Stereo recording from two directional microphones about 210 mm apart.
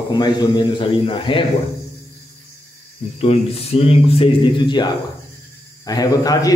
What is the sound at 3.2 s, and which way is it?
A man's voice, 30° left (ahead or behind).